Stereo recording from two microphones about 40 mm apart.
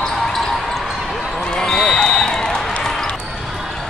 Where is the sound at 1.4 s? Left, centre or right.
Centre.